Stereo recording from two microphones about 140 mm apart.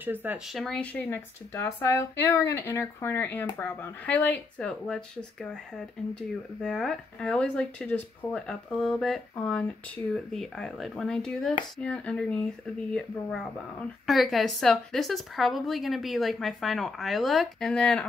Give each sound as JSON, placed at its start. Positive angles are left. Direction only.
{"t": 0.0, "sound": "speech", "side_deg": -15}
{"t": 0.5, "sound": "speech", "side_deg": 0}